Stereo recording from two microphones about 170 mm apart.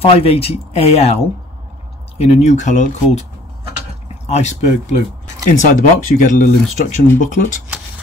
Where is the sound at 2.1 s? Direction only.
40° left (ahead or behind).